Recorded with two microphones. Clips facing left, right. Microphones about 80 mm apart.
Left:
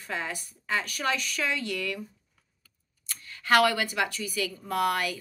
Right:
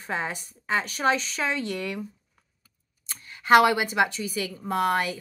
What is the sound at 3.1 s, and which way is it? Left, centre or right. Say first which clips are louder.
A woman's voice: right 5 dB; right.